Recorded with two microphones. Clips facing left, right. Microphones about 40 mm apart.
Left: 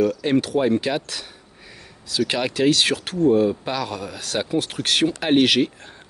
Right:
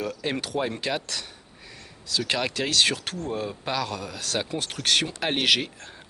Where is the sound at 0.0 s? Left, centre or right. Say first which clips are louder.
Left 10 dB; centre.